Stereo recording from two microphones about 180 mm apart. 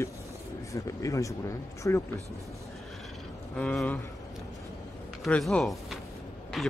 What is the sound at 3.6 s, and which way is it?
Speech, 5° left (ahead or behind).